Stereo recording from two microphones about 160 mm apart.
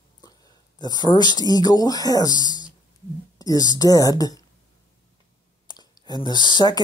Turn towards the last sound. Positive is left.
turn(degrees=25)  # may be behind; listen again after turning